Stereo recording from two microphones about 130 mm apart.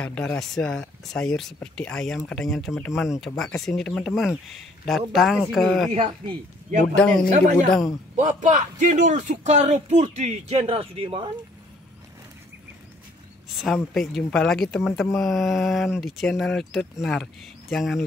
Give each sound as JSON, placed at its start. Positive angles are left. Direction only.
{"t": 0.0, "sound": "speech", "side_deg": 10}
{"t": 5.9, "sound": "speech", "side_deg": -40}
{"t": 7.2, "sound": "a man's voice", "side_deg": -65}
{"t": 13.6, "sound": "speech", "side_deg": 0}